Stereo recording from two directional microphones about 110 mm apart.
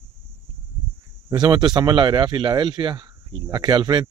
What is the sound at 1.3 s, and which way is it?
A man's voice, 40° right (ahead or behind).